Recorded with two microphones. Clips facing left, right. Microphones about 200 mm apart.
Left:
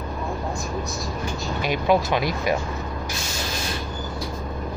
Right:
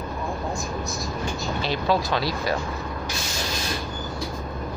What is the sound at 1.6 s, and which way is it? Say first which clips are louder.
Speech: left 4 dB; 15° left (ahead or behind).